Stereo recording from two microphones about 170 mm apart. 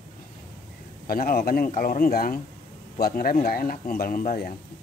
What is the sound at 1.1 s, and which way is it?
A man's voice, 60° left (ahead or behind).